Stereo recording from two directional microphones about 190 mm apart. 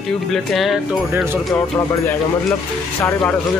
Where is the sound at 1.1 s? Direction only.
10° right (ahead or behind).